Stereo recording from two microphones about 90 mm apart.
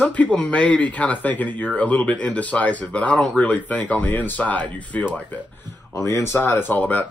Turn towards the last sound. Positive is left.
turn(degrees=15)  # may be behind; listen again after turning